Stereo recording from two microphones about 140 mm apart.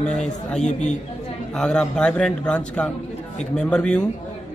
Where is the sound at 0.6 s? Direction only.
55° left (ahead or behind).